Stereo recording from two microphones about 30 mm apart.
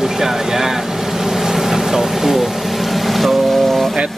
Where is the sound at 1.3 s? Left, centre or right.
Centre.